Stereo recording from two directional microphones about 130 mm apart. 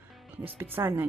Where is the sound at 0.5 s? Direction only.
15° right (ahead or behind).